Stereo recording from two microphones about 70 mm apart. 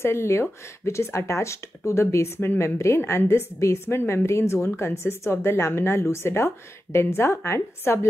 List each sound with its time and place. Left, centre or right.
0.0 s speech: left